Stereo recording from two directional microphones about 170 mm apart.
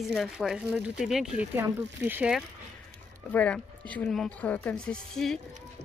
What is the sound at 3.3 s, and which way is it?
Speech, 5° left (ahead or behind).